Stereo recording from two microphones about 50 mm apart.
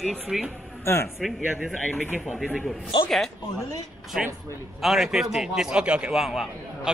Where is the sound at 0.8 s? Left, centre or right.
Left.